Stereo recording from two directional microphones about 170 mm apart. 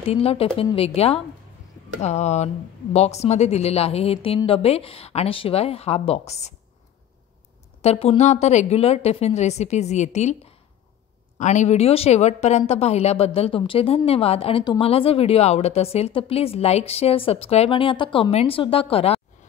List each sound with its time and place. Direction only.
0.0 s a woman's voice: 35° left (ahead or behind)
7.8 s a woman's voice: 35° left (ahead or behind)
11.3 s a woman's voice: 45° left (ahead or behind)